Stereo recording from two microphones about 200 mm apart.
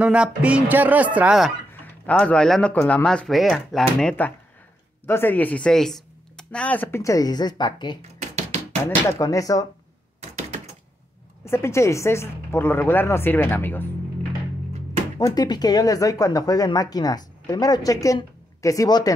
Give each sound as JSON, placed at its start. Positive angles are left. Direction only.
{"t": 0.0, "sound": "speech", "side_deg": -5}
{"t": 1.7, "sound": "speech", "side_deg": 5}
{"t": 9.2, "sound": "speech", "side_deg": 15}
{"t": 10.2, "sound": "a sound", "side_deg": -35}
{"t": 11.4, "sound": "speech", "side_deg": 15}
{"t": 15.1, "sound": "speech", "side_deg": 20}